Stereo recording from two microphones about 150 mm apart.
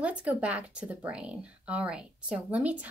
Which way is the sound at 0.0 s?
10° right (ahead or behind).